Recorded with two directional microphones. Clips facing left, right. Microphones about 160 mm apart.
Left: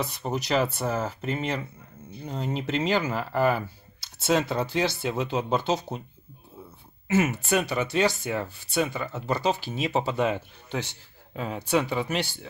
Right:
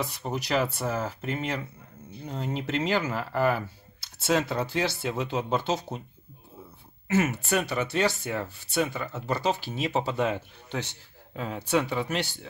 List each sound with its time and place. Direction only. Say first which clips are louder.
0.0 s speech: left 2 dB; 20° left (ahead or behind)
7.1 s speech: left 2 dB; 15° left (ahead or behind)